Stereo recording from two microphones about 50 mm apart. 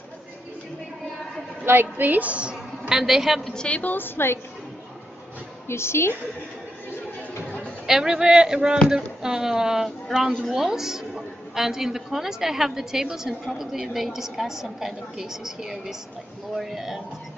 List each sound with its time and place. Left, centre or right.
1.6 s a woman's voice: right
2.9 s a woman's voice: centre
3.6 s a woman's voice: left
3.9 s a woman's voice: left
5.7 s a woman's voice: left
7.4 s music: left
7.8 s a woman's voice: centre